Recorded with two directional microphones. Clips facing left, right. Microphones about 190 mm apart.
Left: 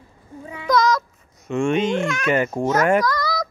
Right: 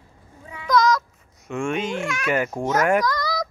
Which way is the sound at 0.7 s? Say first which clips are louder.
Left 1 dB; centre (ahead or behind).